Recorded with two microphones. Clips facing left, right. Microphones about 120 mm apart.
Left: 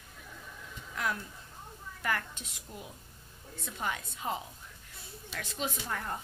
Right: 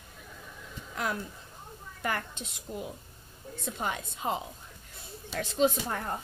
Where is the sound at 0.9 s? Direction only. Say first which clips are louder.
Right 2 dB; 25° right (ahead or behind).